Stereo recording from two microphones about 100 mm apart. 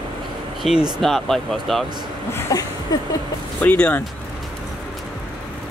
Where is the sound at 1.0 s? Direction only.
5° left (ahead or behind).